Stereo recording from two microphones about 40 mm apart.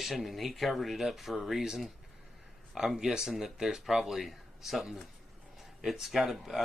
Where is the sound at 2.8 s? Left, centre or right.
Centre.